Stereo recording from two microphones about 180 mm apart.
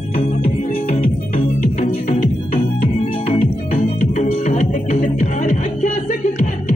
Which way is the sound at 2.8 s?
35° left (ahead or behind).